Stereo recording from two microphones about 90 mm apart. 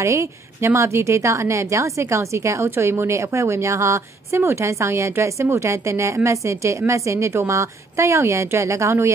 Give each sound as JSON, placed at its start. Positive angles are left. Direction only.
{"t": 0.0, "sound": "a woman's voice", "side_deg": -30}